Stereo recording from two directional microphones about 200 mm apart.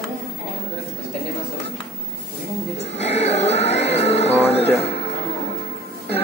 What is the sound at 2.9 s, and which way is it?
Music, 30° left (ahead or behind).